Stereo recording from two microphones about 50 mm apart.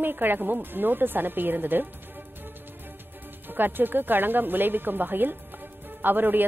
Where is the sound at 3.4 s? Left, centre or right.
Right.